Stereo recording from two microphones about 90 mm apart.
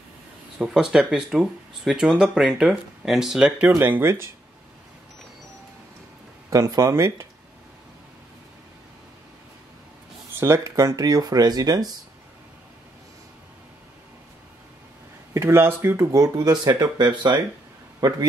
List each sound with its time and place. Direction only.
0.6 s speech: 5° right (ahead or behind); by 4.3 s 30° right (ahead or behind)
6.5 s speech: 35° right (ahead or behind)
10.4 s speech: 35° right (ahead or behind)
11.1 s speech: 45° right (ahead or behind)
15.3 s speech: 30° right (ahead or behind); by 18.2 s 55° right (ahead or behind)